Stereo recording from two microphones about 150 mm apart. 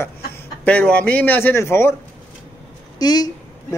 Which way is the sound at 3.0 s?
25° left (ahead or behind).